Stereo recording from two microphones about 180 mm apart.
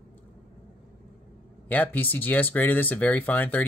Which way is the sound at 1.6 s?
10° left (ahead or behind).